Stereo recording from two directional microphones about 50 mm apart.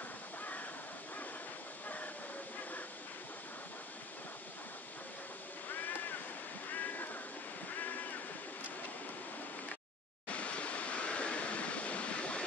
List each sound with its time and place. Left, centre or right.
5.7 s waves: left
10.2 s waves: left